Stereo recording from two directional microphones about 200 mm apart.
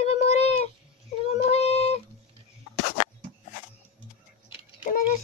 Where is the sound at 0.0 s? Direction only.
30° left (ahead or behind).